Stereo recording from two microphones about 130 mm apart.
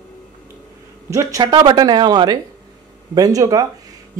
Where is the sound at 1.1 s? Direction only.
25° right (ahead or behind).